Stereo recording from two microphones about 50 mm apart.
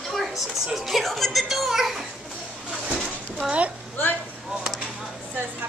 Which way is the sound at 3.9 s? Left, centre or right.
Left.